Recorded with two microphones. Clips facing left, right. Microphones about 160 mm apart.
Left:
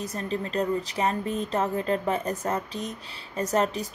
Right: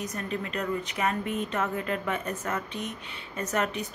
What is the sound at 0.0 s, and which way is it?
Speech, 30° left (ahead or behind).